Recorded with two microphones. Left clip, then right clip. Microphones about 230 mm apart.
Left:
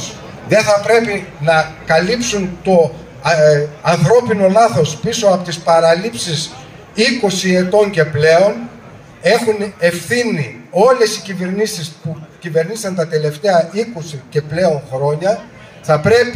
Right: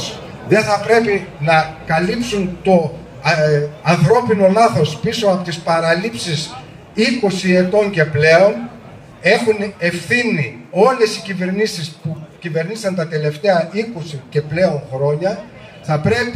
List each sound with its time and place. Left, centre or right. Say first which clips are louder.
0.5 s a man's voice: left 3 dB; left